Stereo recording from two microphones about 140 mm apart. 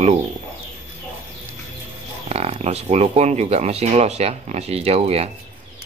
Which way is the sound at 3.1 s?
50° right (ahead or behind).